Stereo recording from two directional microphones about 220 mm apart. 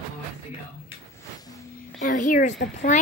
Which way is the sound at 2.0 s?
35° left (ahead or behind).